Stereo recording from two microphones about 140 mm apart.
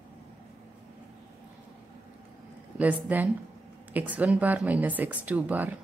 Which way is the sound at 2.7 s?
10° right (ahead or behind).